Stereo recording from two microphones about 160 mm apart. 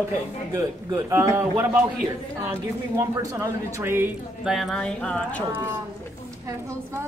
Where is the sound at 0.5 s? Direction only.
15° right (ahead or behind).